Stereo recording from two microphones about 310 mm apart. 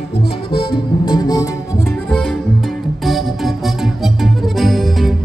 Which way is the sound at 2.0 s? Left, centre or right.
Centre.